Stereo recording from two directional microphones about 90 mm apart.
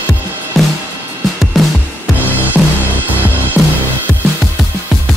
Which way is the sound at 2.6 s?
20° right (ahead or behind).